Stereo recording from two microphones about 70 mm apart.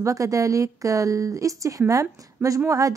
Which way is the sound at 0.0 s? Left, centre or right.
Right.